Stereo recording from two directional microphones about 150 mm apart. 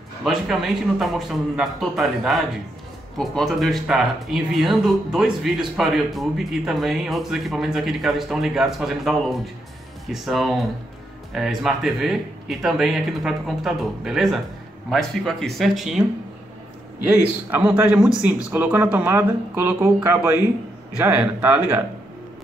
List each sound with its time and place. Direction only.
0.2 s speech: centre (ahead or behind)
10.1 s speech: centre (ahead or behind)
17.0 s speech: 10° right (ahead or behind)